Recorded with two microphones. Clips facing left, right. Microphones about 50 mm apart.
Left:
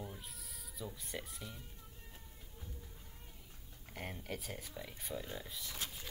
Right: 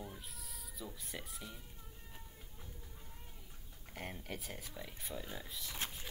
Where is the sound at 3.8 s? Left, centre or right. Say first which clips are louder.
Left 1 dB; centre.